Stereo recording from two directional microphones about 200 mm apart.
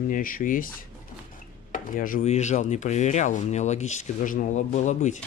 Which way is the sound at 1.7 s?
45° left (ahead or behind).